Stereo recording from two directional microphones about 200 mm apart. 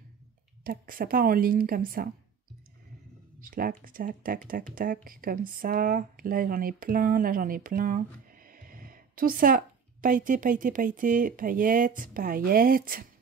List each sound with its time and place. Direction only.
0.7 s speech: 45° right (ahead or behind)
3.3 s speech: 45° right (ahead or behind)